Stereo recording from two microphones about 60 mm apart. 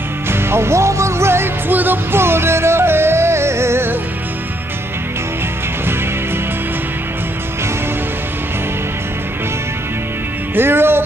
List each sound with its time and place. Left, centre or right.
0.3 s music: right
10.5 s music: right